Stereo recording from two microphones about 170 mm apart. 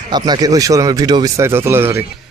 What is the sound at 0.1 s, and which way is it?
Speech, 25° right (ahead or behind).